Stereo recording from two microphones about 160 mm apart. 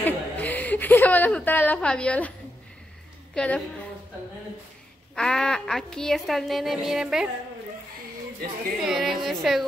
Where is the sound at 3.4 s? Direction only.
5° left (ahead or behind).